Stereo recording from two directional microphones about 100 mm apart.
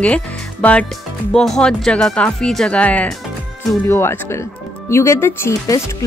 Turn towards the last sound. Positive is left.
turn(degrees=25)  # may be behind; listen again after turning